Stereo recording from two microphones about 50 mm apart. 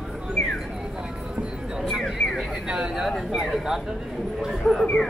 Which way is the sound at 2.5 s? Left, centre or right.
Centre.